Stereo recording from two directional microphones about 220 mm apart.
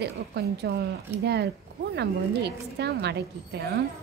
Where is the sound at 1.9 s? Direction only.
50° right (ahead or behind).